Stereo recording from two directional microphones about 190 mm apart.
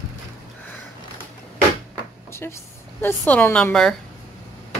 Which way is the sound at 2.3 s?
15° left (ahead or behind).